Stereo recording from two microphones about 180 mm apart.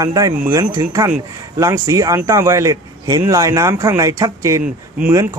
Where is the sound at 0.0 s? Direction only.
20° right (ahead or behind).